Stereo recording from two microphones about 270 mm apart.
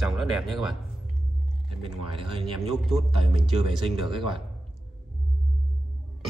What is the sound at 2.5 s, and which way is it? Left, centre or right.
Speech, centre.